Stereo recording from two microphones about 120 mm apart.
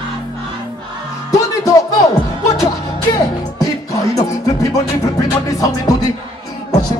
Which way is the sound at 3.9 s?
30° left (ahead or behind).